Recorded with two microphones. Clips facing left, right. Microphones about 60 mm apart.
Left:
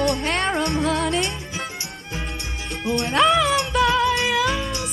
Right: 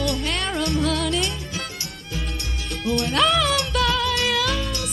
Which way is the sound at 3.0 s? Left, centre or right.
Left.